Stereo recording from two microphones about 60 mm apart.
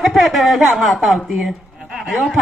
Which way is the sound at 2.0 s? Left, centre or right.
Centre.